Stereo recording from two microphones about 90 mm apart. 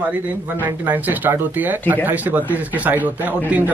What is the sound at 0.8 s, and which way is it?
Speech, 20° right (ahead or behind).